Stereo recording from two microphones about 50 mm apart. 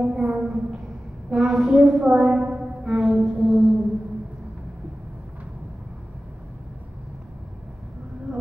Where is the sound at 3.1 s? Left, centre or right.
Centre.